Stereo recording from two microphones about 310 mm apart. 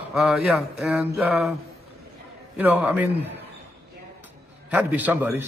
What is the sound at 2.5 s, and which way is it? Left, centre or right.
Speech, centre.